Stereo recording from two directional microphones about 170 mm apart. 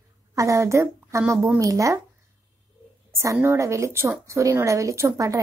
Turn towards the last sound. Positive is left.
turn(degrees=-20)  # may be behind; listen again after turning